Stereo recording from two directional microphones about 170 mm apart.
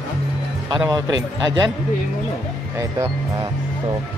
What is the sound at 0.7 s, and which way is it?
Speech, 25° right (ahead or behind).